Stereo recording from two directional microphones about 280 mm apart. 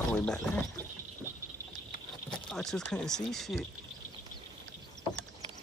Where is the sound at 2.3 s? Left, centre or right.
Centre.